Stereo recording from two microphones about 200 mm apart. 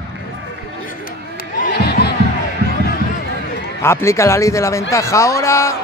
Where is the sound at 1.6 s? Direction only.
50° left (ahead or behind).